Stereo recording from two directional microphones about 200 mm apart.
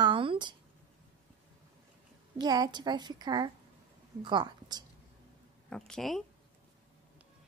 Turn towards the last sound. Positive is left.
turn(degrees=0)  # may be behind; listen again after turning